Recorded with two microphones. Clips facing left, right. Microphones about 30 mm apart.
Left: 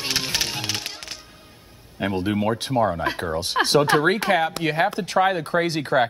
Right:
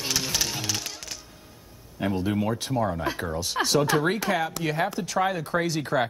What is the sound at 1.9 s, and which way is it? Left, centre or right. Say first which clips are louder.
Speech: left 3 dB; left.